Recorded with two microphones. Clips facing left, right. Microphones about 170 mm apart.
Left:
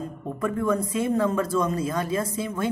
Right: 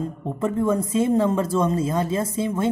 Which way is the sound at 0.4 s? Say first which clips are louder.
Right 3 dB; 25° right (ahead or behind).